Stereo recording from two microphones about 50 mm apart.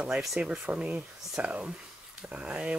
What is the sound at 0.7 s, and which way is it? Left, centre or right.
Speech, right.